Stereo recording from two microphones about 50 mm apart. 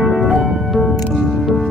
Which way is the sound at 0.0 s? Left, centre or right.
Centre.